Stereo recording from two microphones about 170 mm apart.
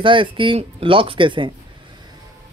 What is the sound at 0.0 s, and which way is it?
Speech, 30° right (ahead or behind).